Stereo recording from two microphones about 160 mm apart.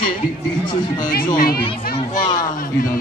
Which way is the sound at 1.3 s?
65° left (ahead or behind).